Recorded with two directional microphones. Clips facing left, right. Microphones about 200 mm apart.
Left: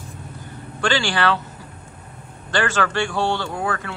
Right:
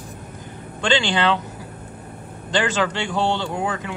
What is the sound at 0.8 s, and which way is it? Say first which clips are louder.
Speech: right 1 dB; 20° right (ahead or behind).